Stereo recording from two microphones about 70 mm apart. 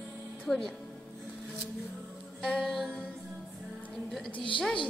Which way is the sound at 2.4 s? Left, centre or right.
Centre.